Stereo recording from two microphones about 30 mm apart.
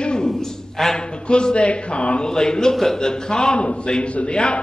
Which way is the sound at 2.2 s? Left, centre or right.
Left.